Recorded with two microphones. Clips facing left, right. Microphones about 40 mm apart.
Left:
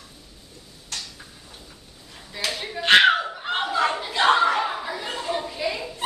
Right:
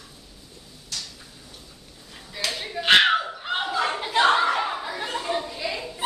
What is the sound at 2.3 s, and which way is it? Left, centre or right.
Clapping, centre.